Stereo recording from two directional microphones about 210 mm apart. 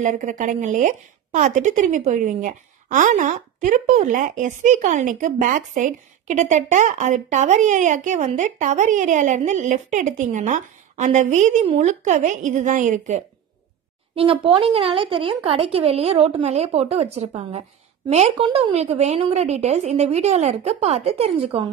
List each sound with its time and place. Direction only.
0.0 s speech: 35° right (ahead or behind)
14.1 s a woman's voice: 25° right (ahead or behind)